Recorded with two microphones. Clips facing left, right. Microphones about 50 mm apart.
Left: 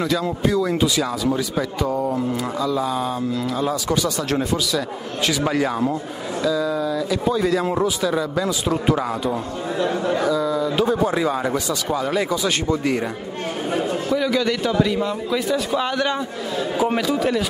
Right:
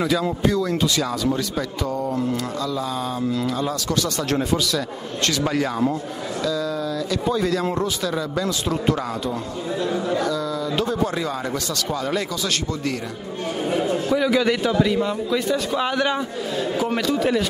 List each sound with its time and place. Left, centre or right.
0.0 s speech: centre
9.8 s a man's voice: left
10.2 s speech: centre
14.1 s a man's voice: centre
16.7 s speech: centre